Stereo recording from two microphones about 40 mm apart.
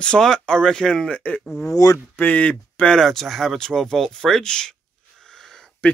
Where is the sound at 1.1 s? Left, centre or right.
Left.